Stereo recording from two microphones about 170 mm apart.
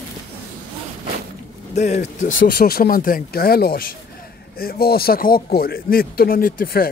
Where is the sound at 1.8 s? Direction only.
45° left (ahead or behind).